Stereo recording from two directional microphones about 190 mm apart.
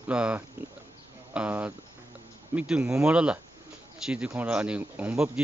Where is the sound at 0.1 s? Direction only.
5° right (ahead or behind).